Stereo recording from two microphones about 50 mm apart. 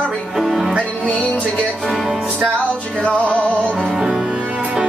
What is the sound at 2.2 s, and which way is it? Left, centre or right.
Music, right.